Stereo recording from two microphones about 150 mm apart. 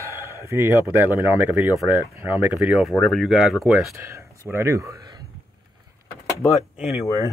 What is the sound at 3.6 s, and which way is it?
Speech, 15° right (ahead or behind).